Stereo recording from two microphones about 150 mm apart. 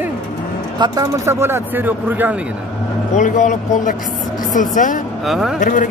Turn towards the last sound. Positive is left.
turn(degrees=60)  # may be behind; listen again after turning